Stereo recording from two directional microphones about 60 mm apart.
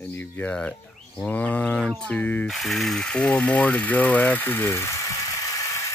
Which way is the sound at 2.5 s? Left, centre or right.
Centre.